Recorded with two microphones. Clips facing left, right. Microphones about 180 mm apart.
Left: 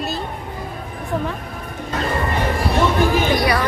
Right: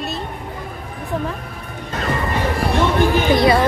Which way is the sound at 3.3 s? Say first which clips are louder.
Right 4 dB; 25° right (ahead or behind).